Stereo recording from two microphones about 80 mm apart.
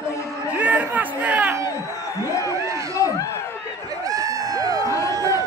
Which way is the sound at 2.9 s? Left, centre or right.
Left.